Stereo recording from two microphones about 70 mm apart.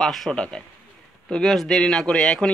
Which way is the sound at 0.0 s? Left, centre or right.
Centre.